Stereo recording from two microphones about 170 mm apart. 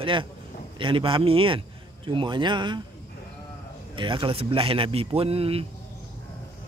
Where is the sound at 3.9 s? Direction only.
30° right (ahead or behind).